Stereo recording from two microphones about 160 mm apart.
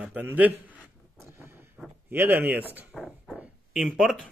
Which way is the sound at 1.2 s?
15° right (ahead or behind).